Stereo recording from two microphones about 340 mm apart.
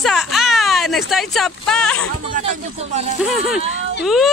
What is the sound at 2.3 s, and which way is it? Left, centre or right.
Speech, right.